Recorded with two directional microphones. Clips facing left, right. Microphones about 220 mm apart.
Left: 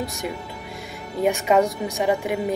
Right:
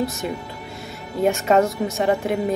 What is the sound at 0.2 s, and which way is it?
A woman's voice, 10° left (ahead or behind).